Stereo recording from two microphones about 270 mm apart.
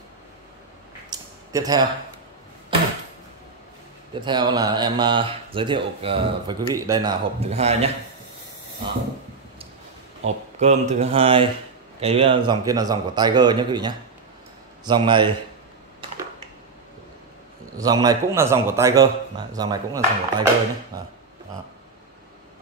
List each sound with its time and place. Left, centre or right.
1.1 s a sound: centre
4.1 s speech: centre
10.2 s speech: right
17.7 s speech: centre